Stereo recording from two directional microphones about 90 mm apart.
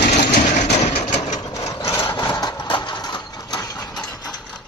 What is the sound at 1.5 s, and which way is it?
Wood, 35° left (ahead or behind).